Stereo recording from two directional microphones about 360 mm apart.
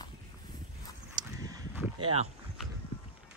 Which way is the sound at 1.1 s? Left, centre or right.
Centre.